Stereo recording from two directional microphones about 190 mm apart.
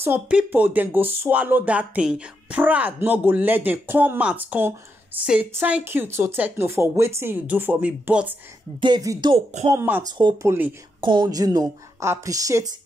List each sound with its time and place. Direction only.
0.0 s speech: 10° right (ahead or behind)
8.8 s speech: 20° right (ahead or behind)
9.3 s speech: 40° right (ahead or behind)
9.7 s speech: 10° right (ahead or behind)
10.1 s speech: 25° right (ahead or behind)